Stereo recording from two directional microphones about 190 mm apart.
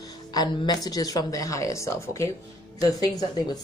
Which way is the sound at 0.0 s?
20° left (ahead or behind).